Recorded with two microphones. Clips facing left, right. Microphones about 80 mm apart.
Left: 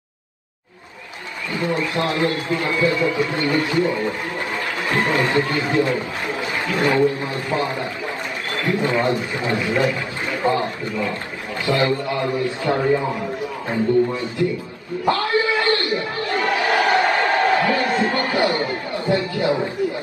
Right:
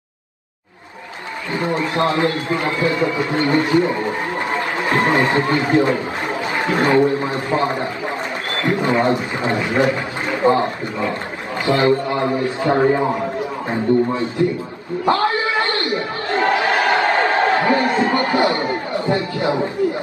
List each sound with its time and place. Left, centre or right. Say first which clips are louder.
1.5 s a man's voice: right 2 dB; right
12.7 s a man's voice: right 4 dB; right
13.7 s a man's voice: right 1 dB; right
15.0 s a sound: right 2 dB; right